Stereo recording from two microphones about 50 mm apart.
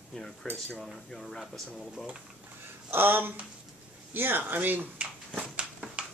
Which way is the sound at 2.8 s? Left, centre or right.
Right.